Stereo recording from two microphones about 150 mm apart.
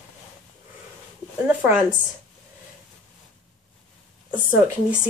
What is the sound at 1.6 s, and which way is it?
Speech, 10° right (ahead or behind).